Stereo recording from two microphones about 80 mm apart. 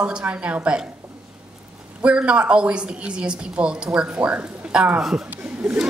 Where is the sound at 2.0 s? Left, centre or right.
Centre.